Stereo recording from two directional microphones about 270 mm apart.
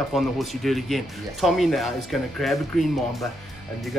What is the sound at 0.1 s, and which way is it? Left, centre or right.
Speech, centre.